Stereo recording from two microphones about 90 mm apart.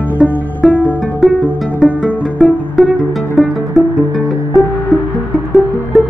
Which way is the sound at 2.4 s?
Centre (ahead or behind).